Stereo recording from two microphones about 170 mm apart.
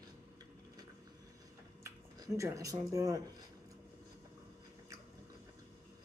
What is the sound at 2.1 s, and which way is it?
Speech, 20° right (ahead or behind).